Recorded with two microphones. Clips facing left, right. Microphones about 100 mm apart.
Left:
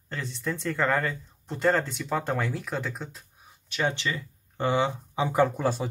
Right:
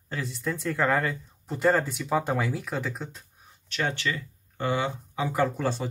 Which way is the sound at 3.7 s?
15° left (ahead or behind).